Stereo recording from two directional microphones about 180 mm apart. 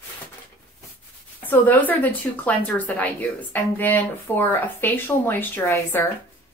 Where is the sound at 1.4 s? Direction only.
10° left (ahead or behind).